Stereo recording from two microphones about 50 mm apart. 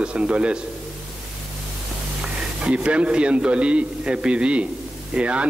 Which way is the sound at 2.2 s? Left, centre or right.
Centre.